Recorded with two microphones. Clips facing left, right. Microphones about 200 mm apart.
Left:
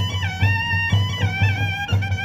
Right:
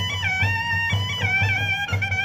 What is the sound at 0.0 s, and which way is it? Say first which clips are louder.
Music: left 4 dB; 35° left (ahead or behind).